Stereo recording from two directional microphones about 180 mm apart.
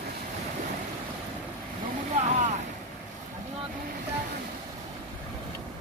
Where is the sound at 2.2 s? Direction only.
40° right (ahead or behind).